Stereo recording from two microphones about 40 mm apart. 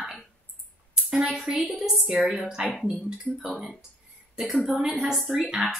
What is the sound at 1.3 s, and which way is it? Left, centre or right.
A woman's voice, right.